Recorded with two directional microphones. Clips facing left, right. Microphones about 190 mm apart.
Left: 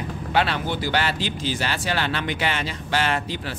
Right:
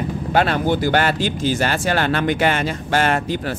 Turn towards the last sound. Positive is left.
turn(degrees=-50)  # may be behind; listen again after turning